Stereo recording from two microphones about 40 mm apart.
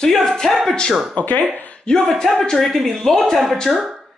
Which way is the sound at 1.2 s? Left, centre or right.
Left.